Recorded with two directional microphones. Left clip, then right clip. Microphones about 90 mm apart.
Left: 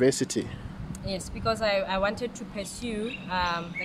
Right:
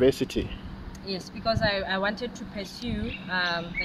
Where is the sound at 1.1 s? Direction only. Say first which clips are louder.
Right 1 dB; 5° left (ahead or behind).